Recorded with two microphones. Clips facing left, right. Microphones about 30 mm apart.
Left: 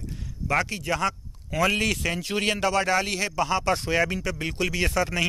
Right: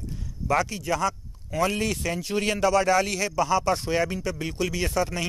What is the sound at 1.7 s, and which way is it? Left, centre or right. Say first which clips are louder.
Speech: left 3 dB; left.